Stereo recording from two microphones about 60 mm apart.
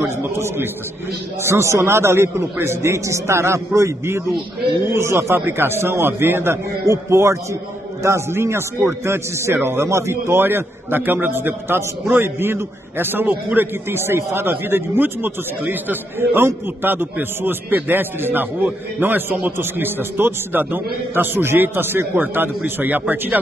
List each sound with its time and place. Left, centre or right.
1.4 s a man's voice: right